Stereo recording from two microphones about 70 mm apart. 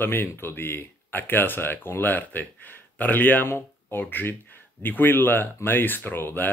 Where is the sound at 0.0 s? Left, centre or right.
Left.